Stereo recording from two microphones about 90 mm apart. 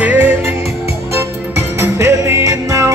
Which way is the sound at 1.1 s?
30° right (ahead or behind).